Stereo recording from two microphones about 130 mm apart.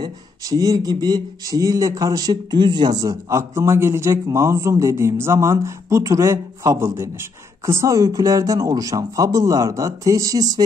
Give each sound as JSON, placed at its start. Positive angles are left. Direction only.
{"t": 0.0, "sound": "speech", "side_deg": -25}